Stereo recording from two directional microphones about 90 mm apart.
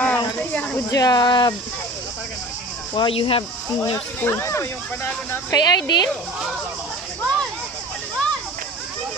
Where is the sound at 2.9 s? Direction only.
75° left (ahead or behind).